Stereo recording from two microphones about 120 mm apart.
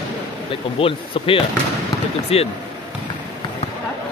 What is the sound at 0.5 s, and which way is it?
Speech, 50° left (ahead or behind).